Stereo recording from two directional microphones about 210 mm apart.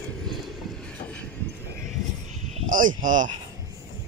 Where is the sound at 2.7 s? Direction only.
40° right (ahead or behind).